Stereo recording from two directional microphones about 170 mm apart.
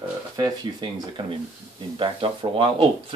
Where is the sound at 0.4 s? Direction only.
25° right (ahead or behind).